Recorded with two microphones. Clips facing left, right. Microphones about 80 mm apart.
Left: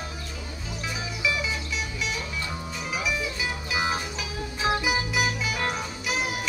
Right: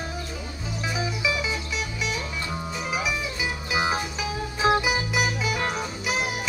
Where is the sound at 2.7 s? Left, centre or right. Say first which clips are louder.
Right 1 dB; centre.